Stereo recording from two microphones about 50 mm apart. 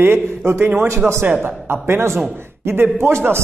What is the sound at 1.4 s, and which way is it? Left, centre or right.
A man's voice, right.